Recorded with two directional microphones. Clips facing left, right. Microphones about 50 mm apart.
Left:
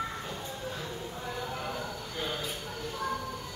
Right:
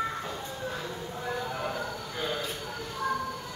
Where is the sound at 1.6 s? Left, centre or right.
Centre.